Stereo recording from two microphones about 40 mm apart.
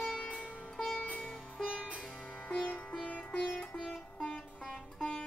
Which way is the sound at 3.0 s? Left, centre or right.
Left.